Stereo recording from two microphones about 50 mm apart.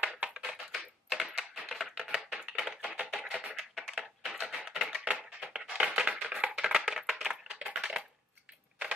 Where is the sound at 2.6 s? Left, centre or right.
Centre.